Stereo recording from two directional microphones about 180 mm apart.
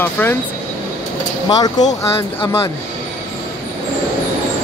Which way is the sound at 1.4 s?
20° left (ahead or behind).